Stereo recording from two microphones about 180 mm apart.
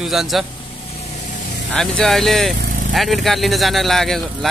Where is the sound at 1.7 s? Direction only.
5° left (ahead or behind).